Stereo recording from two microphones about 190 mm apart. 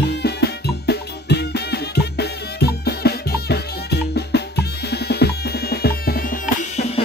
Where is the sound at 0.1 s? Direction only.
60° left (ahead or behind).